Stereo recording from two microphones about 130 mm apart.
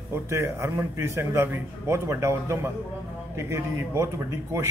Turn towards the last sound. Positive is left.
turn(degrees=-20)  # may be behind; listen again after turning